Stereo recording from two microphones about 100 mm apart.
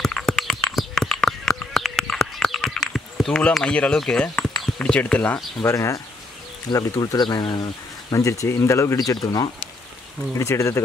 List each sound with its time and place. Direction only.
0.0 s a sound: 5° left (ahead or behind)
5.6 s speech: 30° left (ahead or behind); by 7.7 s 45° left (ahead or behind)
8.1 s speech: 35° left (ahead or behind)
10.3 s speech: 30° left (ahead or behind)